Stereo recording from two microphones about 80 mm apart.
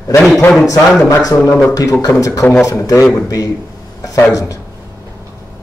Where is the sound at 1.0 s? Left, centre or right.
Left.